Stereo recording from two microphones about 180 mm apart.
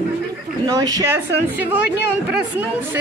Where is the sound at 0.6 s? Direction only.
20° right (ahead or behind).